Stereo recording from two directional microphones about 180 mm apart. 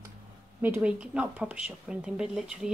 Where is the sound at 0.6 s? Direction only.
10° right (ahead or behind).